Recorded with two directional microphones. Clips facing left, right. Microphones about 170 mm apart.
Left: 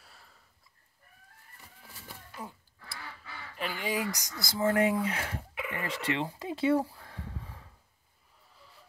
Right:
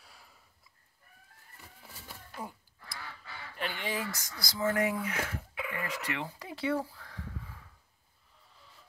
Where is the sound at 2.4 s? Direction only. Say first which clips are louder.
Right 1 dB; 10° right (ahead or behind).